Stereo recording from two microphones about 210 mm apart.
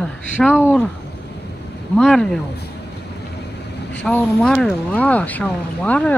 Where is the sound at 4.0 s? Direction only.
5° left (ahead or behind).